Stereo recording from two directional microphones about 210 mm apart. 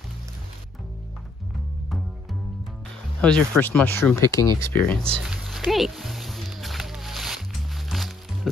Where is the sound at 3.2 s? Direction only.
5° left (ahead or behind).